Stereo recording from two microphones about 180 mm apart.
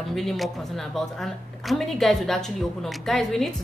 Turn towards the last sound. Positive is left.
turn(degrees=0)  # may be behind; listen again after turning